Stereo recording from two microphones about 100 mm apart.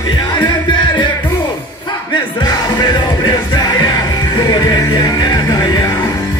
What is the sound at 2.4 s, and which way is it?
Music, 45° left (ahead or behind).